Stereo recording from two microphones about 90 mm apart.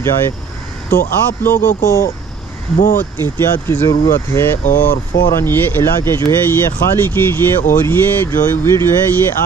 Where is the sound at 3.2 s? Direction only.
25° left (ahead or behind).